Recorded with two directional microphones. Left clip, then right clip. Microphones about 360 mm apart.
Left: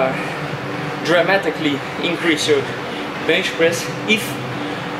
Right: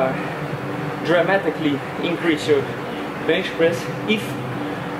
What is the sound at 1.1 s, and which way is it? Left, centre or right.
Speech, centre.